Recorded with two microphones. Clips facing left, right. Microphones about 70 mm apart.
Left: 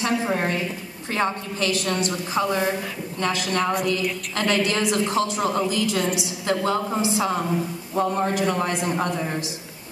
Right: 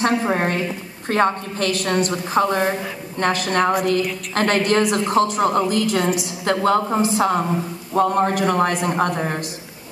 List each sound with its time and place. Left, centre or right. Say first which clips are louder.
0.0 s a woman's voice: right 4 dB; right